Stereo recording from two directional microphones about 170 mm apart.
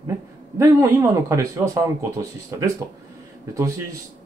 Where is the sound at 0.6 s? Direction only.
20° right (ahead or behind).